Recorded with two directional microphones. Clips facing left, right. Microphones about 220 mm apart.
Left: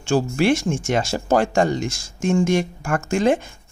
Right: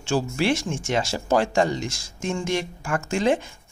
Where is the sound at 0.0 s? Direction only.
50° left (ahead or behind).